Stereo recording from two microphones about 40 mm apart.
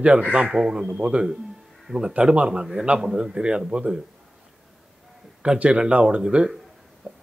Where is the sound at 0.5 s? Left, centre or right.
Centre.